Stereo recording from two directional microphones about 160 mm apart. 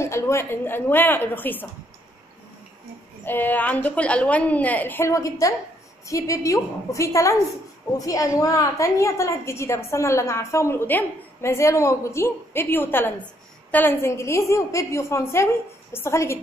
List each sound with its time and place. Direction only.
0.0 s a woman's voice: 15° left (ahead or behind)
3.3 s a woman's voice: 10° left (ahead or behind)